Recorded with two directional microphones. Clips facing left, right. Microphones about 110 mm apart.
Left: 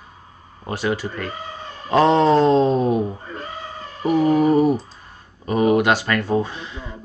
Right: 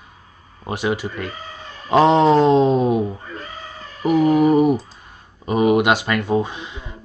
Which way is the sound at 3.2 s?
35° left (ahead or behind).